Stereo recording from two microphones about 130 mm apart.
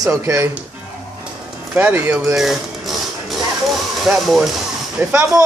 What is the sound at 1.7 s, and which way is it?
Speech, 15° right (ahead or behind).